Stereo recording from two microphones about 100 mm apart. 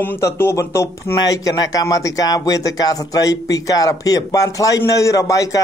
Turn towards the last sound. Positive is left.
turn(degrees=35)  # may be behind; listen again after turning